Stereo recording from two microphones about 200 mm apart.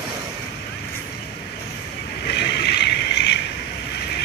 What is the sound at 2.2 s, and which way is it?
Vehicle, 55° left (ahead or behind).